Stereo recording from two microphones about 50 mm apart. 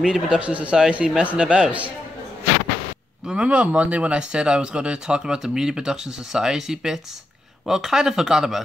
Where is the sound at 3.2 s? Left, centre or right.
Right.